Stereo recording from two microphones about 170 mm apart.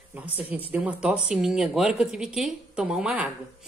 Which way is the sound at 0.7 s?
10° right (ahead or behind).